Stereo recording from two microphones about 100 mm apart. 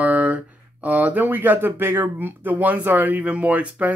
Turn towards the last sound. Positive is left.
turn(degrees=-15)  # may be behind; listen again after turning